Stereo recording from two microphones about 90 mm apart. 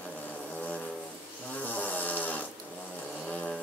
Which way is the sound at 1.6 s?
20° left (ahead or behind).